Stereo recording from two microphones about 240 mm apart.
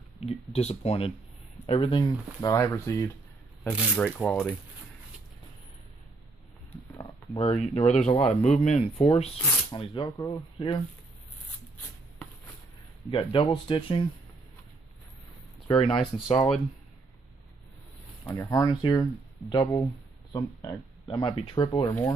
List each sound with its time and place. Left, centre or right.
0.2 s speech: left
3.7 s speech: centre
7.3 s speech: left
13.1 s speech: left
15.7 s speech: left
16.3 s speech: centre
18.2 s speech: centre